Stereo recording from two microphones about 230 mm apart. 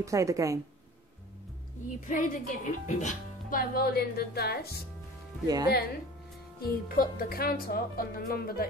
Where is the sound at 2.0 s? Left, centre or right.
Left.